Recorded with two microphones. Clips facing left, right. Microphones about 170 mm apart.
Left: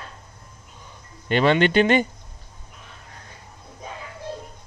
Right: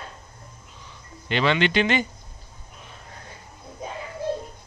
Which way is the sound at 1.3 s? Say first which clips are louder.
Left 4 dB; 45° left (ahead or behind).